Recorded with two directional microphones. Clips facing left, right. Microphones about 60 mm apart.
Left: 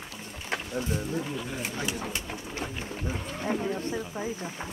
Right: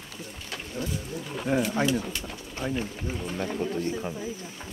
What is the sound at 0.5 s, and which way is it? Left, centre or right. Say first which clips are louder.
Speech: left 3 dB; left.